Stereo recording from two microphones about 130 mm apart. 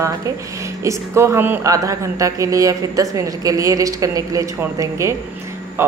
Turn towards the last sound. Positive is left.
turn(degrees=-20)  # may be behind; listen again after turning